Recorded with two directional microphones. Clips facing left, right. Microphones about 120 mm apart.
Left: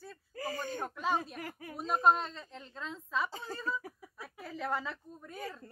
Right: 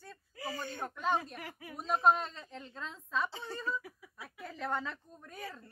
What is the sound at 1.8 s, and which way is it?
Speech, centre (ahead or behind).